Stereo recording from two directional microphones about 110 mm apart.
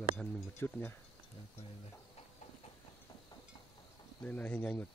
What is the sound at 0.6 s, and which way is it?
Speech, 20° left (ahead or behind).